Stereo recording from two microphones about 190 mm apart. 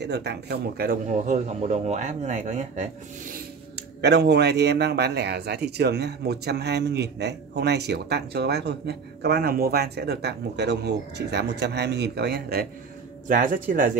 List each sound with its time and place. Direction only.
0.0 s speech: 60° right (ahead or behind)
13.3 s speech: 45° right (ahead or behind)